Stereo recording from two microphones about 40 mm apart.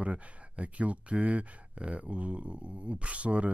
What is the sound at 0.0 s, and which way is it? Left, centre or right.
Speech, right.